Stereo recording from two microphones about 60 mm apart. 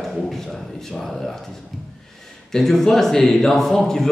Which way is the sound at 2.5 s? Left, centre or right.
Centre.